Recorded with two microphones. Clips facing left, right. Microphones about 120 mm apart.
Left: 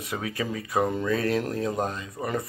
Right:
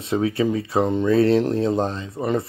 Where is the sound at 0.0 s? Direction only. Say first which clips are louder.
Right 10 dB; 25° right (ahead or behind).